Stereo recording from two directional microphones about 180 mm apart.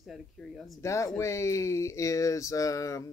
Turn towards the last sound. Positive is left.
turn(degrees=20)  # may be behind; listen again after turning